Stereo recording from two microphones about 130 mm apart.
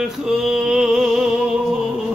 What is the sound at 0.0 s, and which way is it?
Music, 5° right (ahead or behind).